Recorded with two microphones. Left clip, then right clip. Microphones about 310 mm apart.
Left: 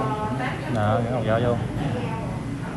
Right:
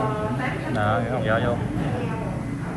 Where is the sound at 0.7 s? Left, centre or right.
Centre.